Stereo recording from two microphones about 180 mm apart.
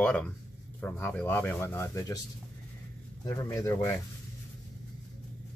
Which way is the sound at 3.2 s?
20° left (ahead or behind).